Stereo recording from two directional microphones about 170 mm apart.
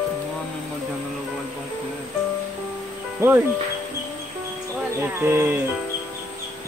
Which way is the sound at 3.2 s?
15° right (ahead or behind).